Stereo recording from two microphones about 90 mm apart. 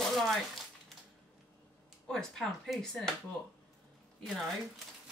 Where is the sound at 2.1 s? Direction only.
5° left (ahead or behind).